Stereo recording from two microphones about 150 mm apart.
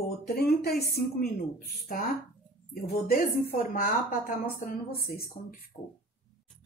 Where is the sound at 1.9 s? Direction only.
75° left (ahead or behind).